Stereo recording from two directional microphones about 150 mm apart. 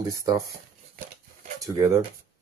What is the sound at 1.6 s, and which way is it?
Speech, 20° right (ahead or behind).